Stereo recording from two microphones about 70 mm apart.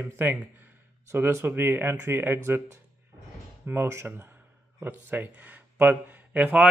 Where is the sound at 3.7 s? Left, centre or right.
Right.